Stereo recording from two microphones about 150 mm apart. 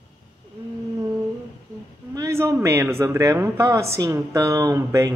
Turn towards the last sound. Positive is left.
turn(degrees=-20)  # may be behind; listen again after turning